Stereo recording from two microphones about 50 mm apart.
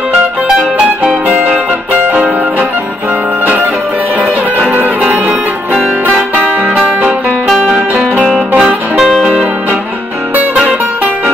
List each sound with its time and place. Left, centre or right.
1.3 s music: right
4.6 s music: right
6.7 s music: centre
7.7 s music: right
8.9 s music: centre
10.5 s music: centre